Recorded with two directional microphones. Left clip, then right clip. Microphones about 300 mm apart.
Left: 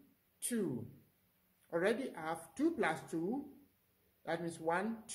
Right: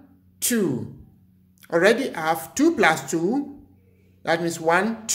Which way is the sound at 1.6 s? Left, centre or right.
Centre.